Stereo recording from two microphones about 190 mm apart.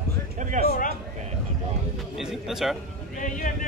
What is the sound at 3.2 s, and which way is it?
Speech, 45° left (ahead or behind).